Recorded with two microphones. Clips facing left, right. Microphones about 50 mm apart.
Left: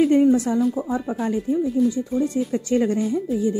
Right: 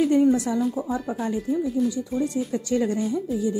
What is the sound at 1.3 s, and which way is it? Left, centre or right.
Speech, left.